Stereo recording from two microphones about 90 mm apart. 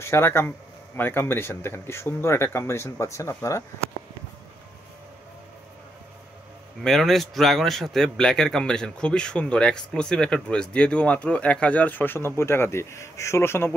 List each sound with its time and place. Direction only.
0.0 s speech: 30° left (ahead or behind)
6.8 s a man's voice: 5° left (ahead or behind); by 13.7 s 25° left (ahead or behind)